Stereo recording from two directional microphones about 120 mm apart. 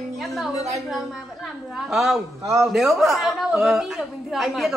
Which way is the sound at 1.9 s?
5° right (ahead or behind).